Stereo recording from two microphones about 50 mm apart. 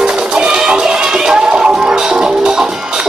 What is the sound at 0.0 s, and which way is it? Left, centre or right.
Music, centre.